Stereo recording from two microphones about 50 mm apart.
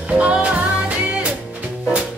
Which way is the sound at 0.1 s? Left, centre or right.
Right.